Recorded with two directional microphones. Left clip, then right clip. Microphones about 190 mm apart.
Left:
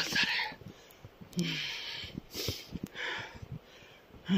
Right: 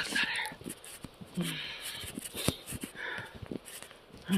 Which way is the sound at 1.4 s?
45° left (ahead or behind).